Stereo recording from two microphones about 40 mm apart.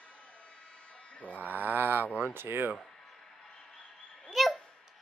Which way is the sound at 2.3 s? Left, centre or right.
Right.